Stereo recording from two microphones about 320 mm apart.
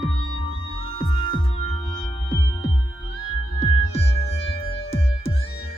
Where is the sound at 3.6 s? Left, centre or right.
Centre.